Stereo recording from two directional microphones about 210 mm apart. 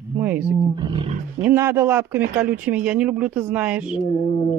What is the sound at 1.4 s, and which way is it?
Speech, 10° right (ahead or behind).